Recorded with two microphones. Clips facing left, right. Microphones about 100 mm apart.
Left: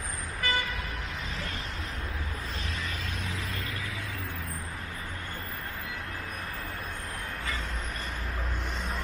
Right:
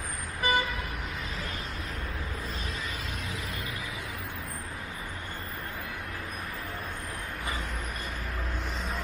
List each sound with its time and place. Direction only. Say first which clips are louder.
0.4 s vehicle: right 4 dB; 20° right (ahead or behind)